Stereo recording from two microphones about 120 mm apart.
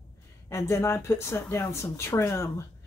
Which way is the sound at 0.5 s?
20° left (ahead or behind).